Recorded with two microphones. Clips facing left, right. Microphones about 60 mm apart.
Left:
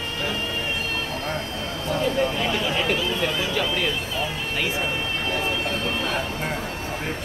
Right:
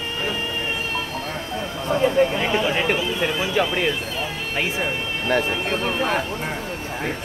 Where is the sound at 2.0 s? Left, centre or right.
Right.